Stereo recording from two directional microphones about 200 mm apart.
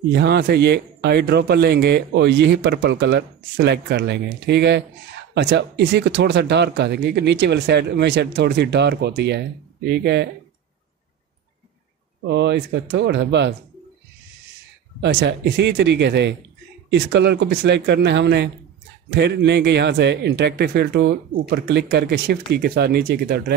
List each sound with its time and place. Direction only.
0.1 s speech: 55° right (ahead or behind)
12.3 s speech: 60° right (ahead or behind)
15.0 s speech: 60° right (ahead or behind)